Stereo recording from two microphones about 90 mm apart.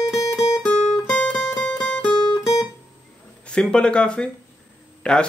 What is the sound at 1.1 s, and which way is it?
Music, 10° left (ahead or behind).